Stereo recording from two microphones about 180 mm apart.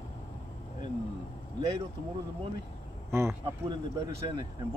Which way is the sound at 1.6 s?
25° right (ahead or behind).